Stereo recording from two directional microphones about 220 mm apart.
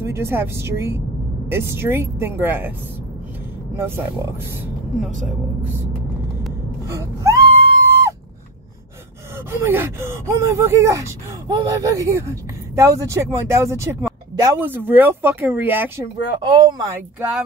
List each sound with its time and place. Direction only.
0.0 s speech: 10° right (ahead or behind)
3.7 s speech: 10° right (ahead or behind)
6.9 s wail: 15° right (ahead or behind)
9.5 s speech: 10° right (ahead or behind)
16.3 s speech: 20° right (ahead or behind)